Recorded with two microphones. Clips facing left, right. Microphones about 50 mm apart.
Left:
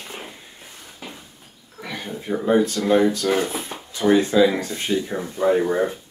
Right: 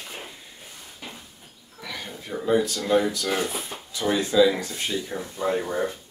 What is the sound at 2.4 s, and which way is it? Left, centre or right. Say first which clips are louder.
Speech: left 4 dB; left.